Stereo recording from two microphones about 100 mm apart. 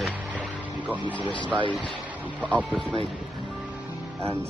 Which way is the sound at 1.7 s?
Centre (ahead or behind).